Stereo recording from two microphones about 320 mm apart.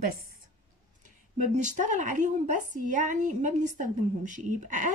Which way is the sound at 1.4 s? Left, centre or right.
Right.